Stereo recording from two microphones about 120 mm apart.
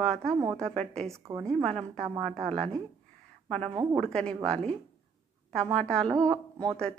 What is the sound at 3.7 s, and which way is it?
Speech, 30° right (ahead or behind).